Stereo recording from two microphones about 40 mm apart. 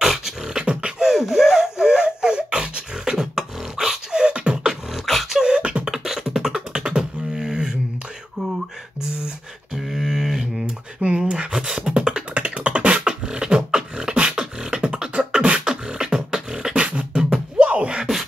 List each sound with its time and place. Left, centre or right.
0.0 s beatboxing: centre
0.5 s beatboxing: right
1.1 s beatboxing: centre
3.2 s beatboxing: centre
4.1 s beatboxing: right
4.9 s beatboxing: centre
5.4 s beatboxing: right
6.0 s beatboxing: centre
9.8 s a sound: centre
11.0 s beatboxing: right
17.6 s beatboxing: right